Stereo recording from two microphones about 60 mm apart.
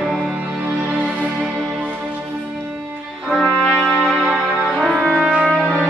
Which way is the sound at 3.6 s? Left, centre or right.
Centre.